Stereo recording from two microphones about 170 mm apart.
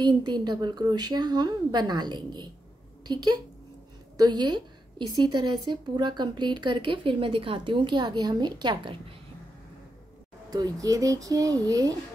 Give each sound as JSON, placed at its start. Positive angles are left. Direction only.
{"t": 0.0, "sound": "a woman's voice", "side_deg": -25}
{"t": 10.5, "sound": "a woman's voice", "side_deg": -20}